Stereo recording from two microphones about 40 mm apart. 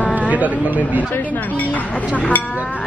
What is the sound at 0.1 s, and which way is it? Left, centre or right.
Speech, right.